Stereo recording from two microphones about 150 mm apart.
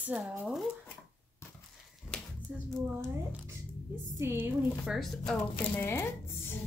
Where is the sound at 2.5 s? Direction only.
10° right (ahead or behind).